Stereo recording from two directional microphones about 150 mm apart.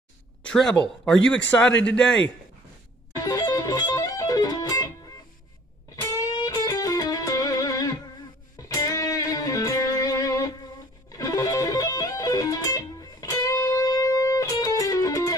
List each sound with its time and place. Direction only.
0.4 s a man's voice: 5° left (ahead or behind)
3.2 s music: 25° left (ahead or behind)
6.0 s music: 25° left (ahead or behind)